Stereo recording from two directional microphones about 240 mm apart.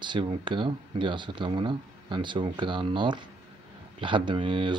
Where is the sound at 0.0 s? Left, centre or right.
Right.